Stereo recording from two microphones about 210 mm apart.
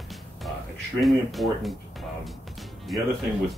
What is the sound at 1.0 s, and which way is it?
Speech, centre (ahead or behind).